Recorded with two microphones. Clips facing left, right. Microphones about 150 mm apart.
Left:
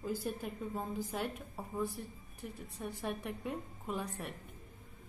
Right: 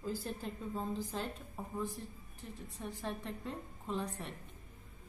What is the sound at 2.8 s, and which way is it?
A woman's voice, 15° left (ahead or behind).